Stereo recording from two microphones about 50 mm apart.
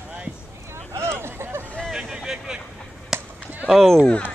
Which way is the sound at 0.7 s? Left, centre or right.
Right.